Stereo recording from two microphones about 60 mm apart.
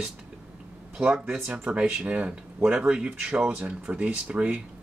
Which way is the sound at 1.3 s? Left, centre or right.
Centre.